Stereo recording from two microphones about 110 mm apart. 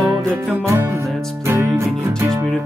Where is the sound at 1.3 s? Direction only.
20° right (ahead or behind).